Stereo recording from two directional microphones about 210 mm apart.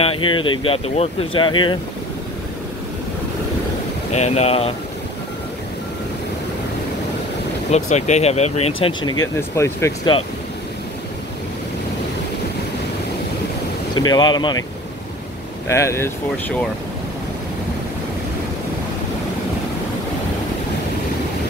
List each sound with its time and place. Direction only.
0.2 s speech: 25° left (ahead or behind)
4.1 s speech: 30° left (ahead or behind)
7.7 s speech: 35° left (ahead or behind)
9.6 s speech: 15° left (ahead or behind)
13.9 s speech: 20° left (ahead or behind)
15.7 s speech: 15° left (ahead or behind)